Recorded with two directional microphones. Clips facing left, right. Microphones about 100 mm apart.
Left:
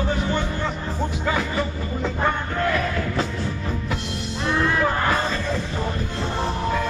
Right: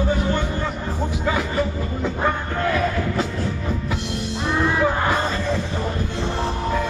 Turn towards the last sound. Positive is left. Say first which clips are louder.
# right 1 dB
turn(degrees=-15)  # may be behind; listen again after turning